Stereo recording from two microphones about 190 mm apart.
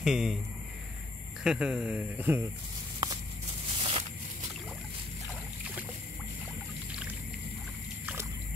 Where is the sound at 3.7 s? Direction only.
30° right (ahead or behind).